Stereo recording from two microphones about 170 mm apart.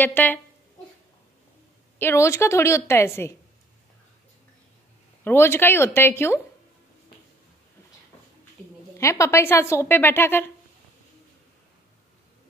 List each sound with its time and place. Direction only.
0.0 s a woman's voice: 10° left (ahead or behind)
2.0 s a woman's voice: 15° left (ahead or behind)
5.2 s a woman's voice: 15° left (ahead or behind)
8.9 s a woman's voice: 15° left (ahead or behind)